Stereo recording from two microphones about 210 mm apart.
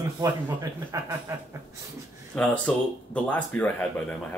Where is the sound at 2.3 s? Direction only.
5° left (ahead or behind).